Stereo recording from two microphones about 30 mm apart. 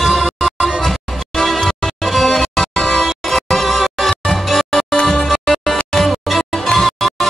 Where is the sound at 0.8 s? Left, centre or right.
Centre.